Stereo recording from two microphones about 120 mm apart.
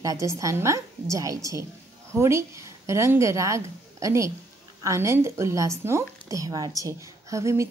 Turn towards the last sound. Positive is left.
turn(degrees=-25)  # may be behind; listen again after turning